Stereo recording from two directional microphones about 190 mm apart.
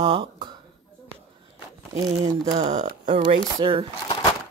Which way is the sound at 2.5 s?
35° right (ahead or behind).